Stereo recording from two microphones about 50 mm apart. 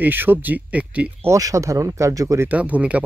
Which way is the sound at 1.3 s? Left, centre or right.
Right.